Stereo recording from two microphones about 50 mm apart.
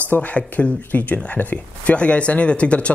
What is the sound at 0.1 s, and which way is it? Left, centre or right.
Speech, left.